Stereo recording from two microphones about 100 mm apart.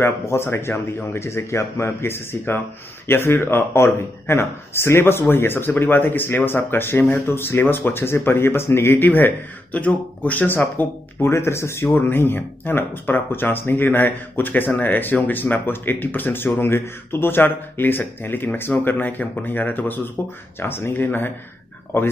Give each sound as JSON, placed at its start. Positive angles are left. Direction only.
{"t": 0.0, "sound": "speech", "side_deg": 25}